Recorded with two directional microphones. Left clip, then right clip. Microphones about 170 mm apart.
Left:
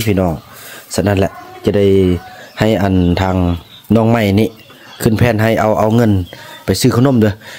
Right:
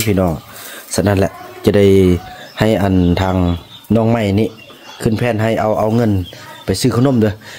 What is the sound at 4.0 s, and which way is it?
Speech, 20° left (ahead or behind).